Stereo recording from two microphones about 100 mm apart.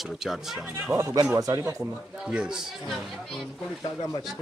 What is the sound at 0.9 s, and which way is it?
Speech, 30° right (ahead or behind).